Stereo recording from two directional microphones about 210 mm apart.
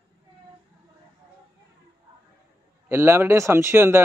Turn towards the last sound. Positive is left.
turn(degrees=-10)  # may be behind; listen again after turning